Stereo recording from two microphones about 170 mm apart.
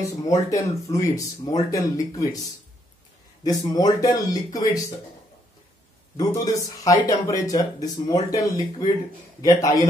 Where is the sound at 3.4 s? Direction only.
20° left (ahead or behind).